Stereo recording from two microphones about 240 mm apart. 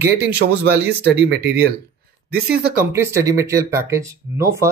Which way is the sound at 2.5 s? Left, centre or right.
Centre.